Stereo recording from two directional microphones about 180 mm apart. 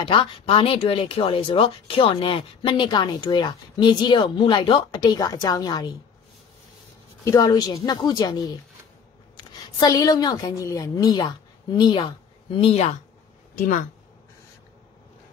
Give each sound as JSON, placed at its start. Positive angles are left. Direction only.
{"t": 0.0, "sound": "speech", "side_deg": 30}
{"t": 7.2, "sound": "speech", "side_deg": 20}
{"t": 9.8, "sound": "speech", "side_deg": 20}